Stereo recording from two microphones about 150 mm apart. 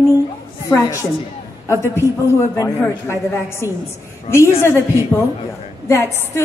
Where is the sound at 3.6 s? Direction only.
20° left (ahead or behind).